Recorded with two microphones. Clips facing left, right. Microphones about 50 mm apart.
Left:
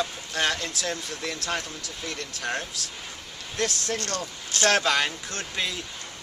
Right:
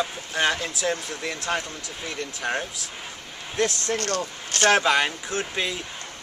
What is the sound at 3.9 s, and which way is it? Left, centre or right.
Speech, right.